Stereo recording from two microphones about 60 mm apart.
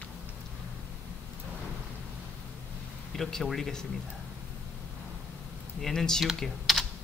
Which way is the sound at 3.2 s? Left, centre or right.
Centre.